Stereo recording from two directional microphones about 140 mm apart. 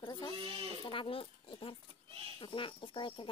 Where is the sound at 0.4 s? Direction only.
40° right (ahead or behind).